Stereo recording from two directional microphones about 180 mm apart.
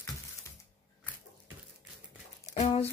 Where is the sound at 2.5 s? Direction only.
40° left (ahead or behind).